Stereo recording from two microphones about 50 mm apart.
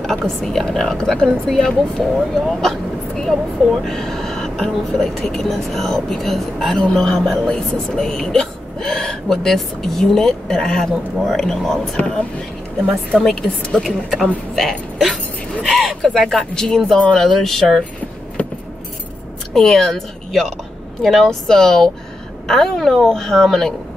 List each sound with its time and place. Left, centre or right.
0.0 s speech: centre
13.6 s a woman's voice: left
13.8 s speech: centre
19.5 s speech: centre